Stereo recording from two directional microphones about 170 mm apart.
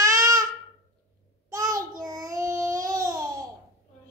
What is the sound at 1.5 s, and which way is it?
Child singing, 20° right (ahead or behind).